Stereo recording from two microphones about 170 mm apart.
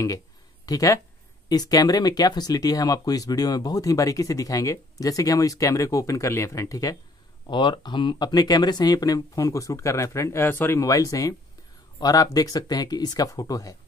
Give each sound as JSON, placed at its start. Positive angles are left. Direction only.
{"t": 0.7, "sound": "speech", "side_deg": 20}